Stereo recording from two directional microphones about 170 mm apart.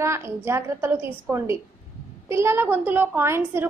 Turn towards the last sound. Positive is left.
turn(degrees=-15)  # may be behind; listen again after turning